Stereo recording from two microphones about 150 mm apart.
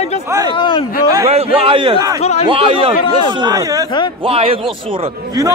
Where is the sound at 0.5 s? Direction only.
35° left (ahead or behind).